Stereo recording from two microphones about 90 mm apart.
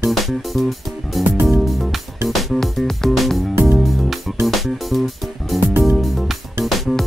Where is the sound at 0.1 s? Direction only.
Centre (ahead or behind).